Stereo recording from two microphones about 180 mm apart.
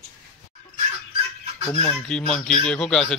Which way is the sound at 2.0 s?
5° left (ahead or behind).